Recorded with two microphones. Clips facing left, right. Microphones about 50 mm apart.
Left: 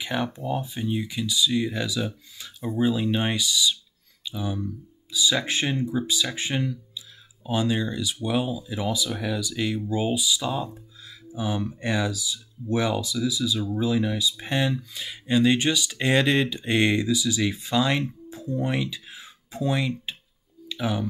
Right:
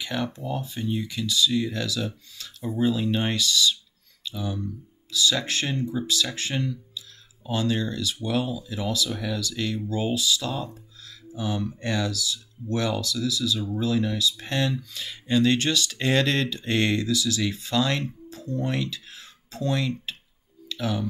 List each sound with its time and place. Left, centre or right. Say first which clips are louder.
0.0 s speech: left 2 dB; centre
0.7 s speech: left 1 dB; centre
20.6 s a sound: left 1 dB; centre